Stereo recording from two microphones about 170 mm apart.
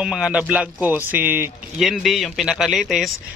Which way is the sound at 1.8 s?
Centre (ahead or behind).